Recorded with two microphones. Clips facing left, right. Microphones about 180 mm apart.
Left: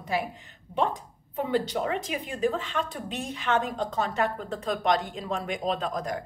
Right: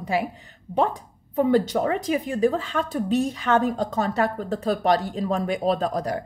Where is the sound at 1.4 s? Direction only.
45° right (ahead or behind).